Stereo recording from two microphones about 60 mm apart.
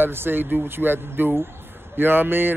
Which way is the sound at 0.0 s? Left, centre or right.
Right.